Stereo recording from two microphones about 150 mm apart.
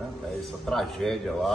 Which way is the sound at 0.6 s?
Centre (ahead or behind).